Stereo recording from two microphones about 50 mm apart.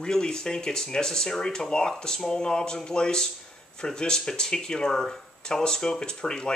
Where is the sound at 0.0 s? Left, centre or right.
Centre.